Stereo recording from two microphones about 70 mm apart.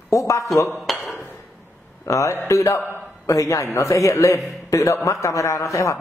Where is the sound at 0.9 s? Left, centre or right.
Centre.